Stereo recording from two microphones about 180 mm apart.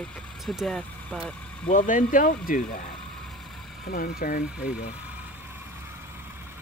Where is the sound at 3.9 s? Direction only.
55° left (ahead or behind).